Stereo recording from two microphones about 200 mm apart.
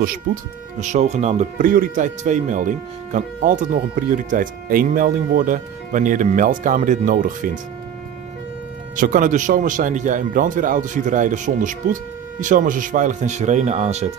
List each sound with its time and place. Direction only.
0.0 s speech: 40° right (ahead or behind)
8.9 s speech: 40° right (ahead or behind)